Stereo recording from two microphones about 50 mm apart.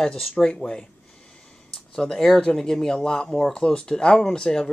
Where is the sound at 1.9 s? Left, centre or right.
Centre.